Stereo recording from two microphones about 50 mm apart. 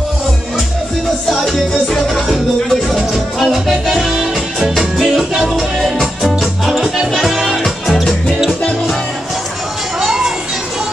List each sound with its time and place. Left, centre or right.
1.3 s music: centre
9.9 s music: centre